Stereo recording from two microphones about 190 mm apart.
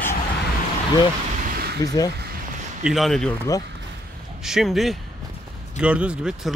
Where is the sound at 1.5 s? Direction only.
55° right (ahead or behind).